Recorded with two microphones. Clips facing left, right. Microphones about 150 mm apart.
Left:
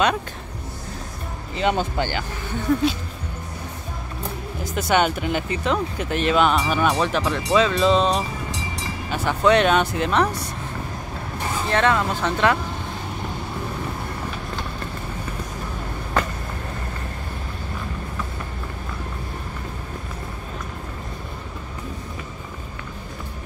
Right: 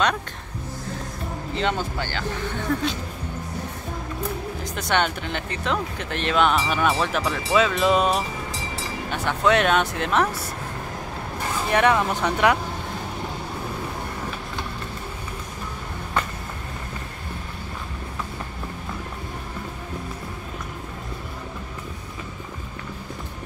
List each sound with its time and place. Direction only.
1.5 s speech: 10° left (ahead or behind)
4.7 s speech: 10° left (ahead or behind); by 8.2 s 10° right (ahead or behind)
9.1 s speech: centre (ahead or behind)
11.7 s speech: 15° right (ahead or behind)